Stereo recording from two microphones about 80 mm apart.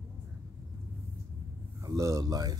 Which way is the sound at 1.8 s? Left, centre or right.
Right.